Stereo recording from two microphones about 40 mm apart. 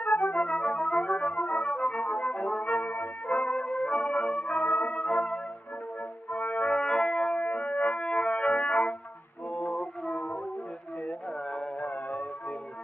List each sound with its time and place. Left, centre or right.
0.0 s organ: left
0.4 s music: left
3.3 s music: left
4.9 s music: left
6.3 s music: left
7.4 s music: left
9.8 s organ: left
11.1 s music: left